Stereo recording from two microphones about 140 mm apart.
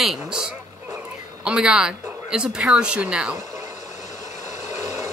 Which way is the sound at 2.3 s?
5° right (ahead or behind).